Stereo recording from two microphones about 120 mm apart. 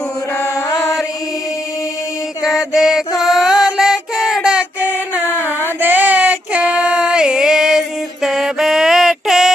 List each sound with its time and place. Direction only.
0.7 s chant: centre (ahead or behind)
2.4 s chant: 5° right (ahead or behind)
3.2 s child singing: 5° right (ahead or behind)
5.8 s a sound: 15° right (ahead or behind)